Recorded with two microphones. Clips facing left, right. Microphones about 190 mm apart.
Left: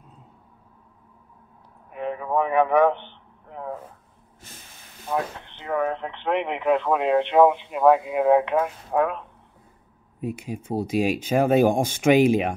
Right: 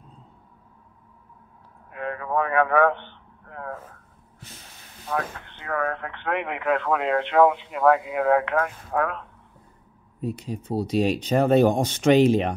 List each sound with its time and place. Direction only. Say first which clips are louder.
2.0 s a man's voice: left 2 dB; 15° left (ahead or behind)
5.0 s speech: left 2 dB; 20° left (ahead or behind)
10.2 s speech: even; 10° left (ahead or behind)